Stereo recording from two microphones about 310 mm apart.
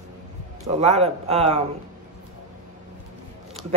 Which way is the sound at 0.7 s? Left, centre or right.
Centre.